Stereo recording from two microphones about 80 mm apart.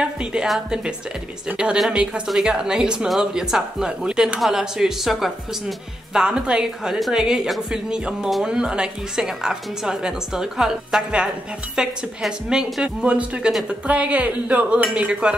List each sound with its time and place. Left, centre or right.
0.0 s a woman's voice: centre